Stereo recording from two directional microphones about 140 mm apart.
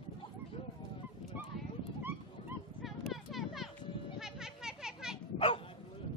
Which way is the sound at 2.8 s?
Centre (ahead or behind).